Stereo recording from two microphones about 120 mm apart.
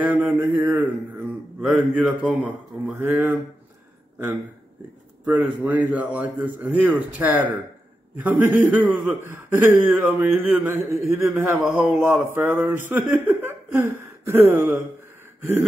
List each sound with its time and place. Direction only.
0.0 s a man's voice: 15° right (ahead or behind)
1.6 s a man's voice: 10° right (ahead or behind)
5.2 s a man's voice: 10° right (ahead or behind)
12.9 s a sound: 20° right (ahead or behind)